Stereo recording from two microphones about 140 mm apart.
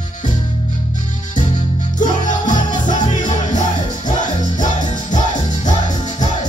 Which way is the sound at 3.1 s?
60° left (ahead or behind).